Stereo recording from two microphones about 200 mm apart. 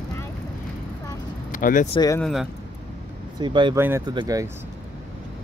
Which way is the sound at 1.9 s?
20° left (ahead or behind).